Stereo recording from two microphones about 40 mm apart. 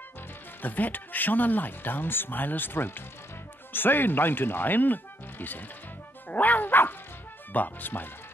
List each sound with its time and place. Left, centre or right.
0.6 s speech: left